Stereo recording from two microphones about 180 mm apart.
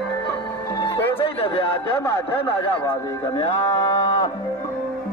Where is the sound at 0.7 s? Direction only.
25° left (ahead or behind).